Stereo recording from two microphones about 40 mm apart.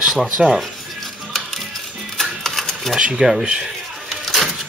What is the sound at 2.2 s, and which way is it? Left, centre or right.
Typewriter, centre.